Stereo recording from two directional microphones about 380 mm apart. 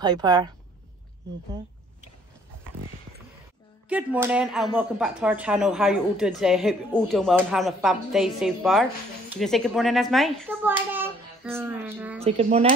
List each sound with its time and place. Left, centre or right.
0.0 s a woman's voice: centre
3.9 s a woman's voice: centre
12.3 s a woman's voice: centre